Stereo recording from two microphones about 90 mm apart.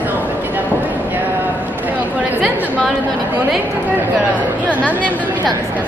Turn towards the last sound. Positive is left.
turn(degrees=15)  # may be behind; listen again after turning